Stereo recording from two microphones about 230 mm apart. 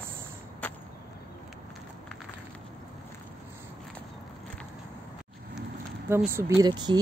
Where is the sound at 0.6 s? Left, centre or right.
Centre.